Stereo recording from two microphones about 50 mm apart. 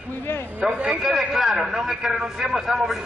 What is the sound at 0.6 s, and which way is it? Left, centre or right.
A man's voice, centre.